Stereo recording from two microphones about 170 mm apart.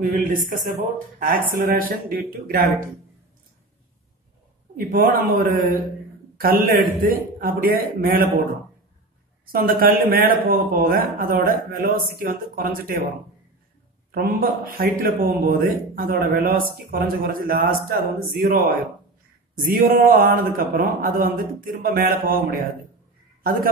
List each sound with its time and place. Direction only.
0.3 s a man's voice: 55° right (ahead or behind)
4.7 s a man's voice: 55° right (ahead or behind)
9.5 s a man's voice: 60° right (ahead or behind)
14.1 s a man's voice: 60° right (ahead or behind)